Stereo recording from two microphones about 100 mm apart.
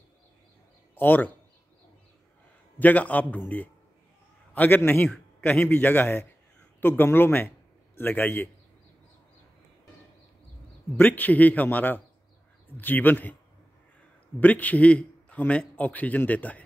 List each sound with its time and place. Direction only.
0.9 s a man's voice: 20° left (ahead or behind)
2.8 s a man's voice: 15° left (ahead or behind)
11.0 s a man's voice: 15° left (ahead or behind)
14.4 s a man's voice: 15° left (ahead or behind)